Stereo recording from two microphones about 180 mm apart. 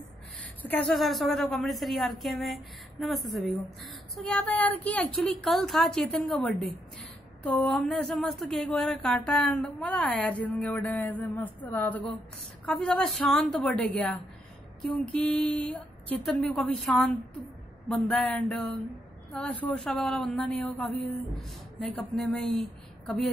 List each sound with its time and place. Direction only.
0.6 s speech: 5° left (ahead or behind)
17.8 s a sound: 5° left (ahead or behind)
19.3 s speech: 10° left (ahead or behind)